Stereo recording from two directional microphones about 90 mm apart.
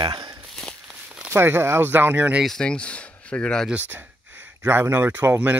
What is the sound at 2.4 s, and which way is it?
Speech, 10° left (ahead or behind).